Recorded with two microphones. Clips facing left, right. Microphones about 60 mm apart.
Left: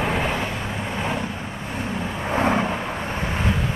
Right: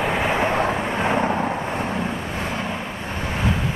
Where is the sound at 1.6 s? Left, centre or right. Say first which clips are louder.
Right 4 dB; right.